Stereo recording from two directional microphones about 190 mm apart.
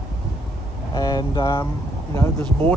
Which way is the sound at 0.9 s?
20° left (ahead or behind).